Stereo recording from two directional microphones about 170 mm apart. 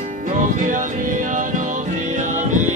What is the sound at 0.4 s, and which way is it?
Music, 50° right (ahead or behind).